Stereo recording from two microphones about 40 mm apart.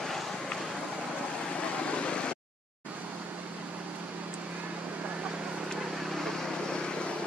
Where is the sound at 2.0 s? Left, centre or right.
Left.